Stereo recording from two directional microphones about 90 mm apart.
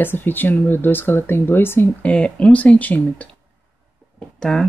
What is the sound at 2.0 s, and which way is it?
Speech, 15° left (ahead or behind).